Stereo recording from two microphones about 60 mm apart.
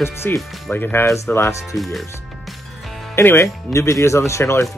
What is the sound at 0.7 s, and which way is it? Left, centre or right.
Speech, left.